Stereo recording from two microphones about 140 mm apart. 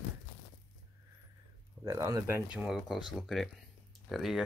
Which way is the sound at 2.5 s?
5° right (ahead or behind).